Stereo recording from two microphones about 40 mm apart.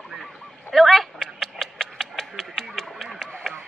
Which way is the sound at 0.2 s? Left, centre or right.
Centre.